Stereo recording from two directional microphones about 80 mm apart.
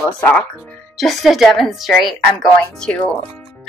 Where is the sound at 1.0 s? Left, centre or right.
Centre.